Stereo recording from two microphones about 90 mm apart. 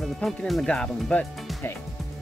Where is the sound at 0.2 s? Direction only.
5° left (ahead or behind).